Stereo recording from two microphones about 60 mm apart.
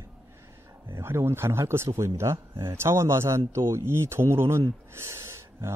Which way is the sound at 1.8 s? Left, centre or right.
Right.